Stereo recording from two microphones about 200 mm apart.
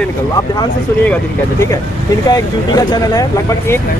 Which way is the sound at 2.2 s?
20° left (ahead or behind).